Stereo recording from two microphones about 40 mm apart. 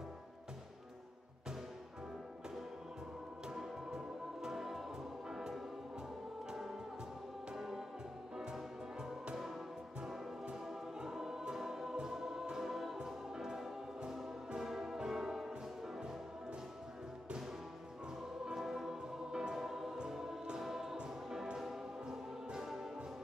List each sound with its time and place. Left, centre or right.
3.4 s music: centre
7.5 s music: centre
10.7 s choir: centre
14.6 s music: centre
18.4 s music: centre